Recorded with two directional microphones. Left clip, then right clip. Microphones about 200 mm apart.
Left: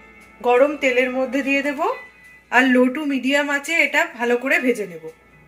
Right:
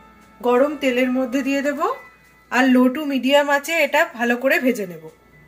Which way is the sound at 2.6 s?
60° right (ahead or behind).